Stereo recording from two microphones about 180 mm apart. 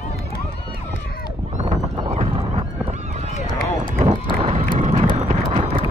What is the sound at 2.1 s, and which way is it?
Horse, 35° right (ahead or behind).